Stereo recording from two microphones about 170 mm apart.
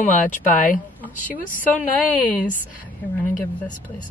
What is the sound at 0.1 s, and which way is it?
Speech, 50° left (ahead or behind).